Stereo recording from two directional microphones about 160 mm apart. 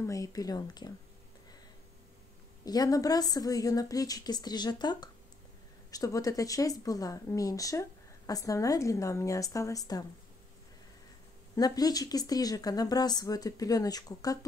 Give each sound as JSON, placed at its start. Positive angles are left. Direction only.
{"t": 0.0, "sound": "speech", "side_deg": 20}
{"t": 2.6, "sound": "speech", "side_deg": 25}
{"t": 11.5, "sound": "speech", "side_deg": 25}